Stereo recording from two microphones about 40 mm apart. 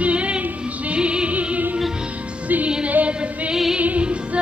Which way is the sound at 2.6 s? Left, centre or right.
Right.